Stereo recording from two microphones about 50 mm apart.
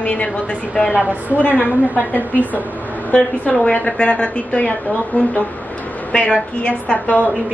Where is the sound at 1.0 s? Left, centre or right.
Right.